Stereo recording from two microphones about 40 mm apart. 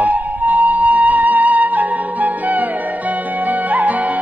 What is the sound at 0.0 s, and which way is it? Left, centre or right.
Music, right.